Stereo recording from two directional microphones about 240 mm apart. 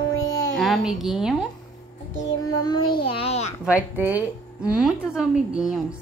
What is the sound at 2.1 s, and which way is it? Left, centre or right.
Child singing, left.